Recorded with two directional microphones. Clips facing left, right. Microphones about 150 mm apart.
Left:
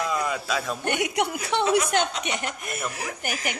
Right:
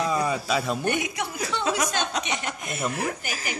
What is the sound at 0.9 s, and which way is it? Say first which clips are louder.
A woman's voice: left 2 dB; 70° left (ahead or behind).